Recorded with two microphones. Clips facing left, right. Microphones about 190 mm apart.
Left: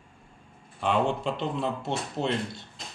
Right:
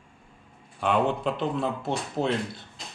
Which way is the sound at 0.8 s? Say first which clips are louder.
Right 1 dB; centre (ahead or behind).